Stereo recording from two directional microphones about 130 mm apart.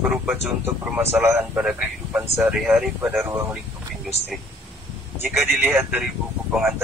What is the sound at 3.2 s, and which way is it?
Speech, 20° right (ahead or behind).